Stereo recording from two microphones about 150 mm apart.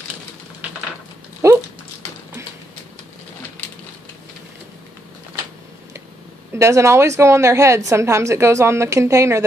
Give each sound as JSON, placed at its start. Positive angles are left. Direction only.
{"t": 1.4, "sound": "dog", "side_deg": -20}
{"t": 6.5, "sound": "a woman's voice", "side_deg": -20}